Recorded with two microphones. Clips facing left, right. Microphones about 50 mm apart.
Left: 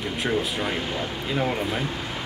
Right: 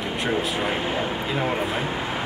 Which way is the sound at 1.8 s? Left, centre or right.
Right.